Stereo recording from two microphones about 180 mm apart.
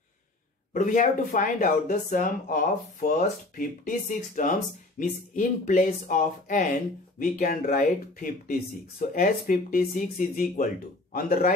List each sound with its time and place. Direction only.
0.7 s speech: 45° left (ahead or behind)